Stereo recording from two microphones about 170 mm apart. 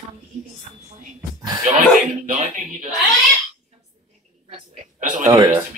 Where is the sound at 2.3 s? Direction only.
45° right (ahead or behind).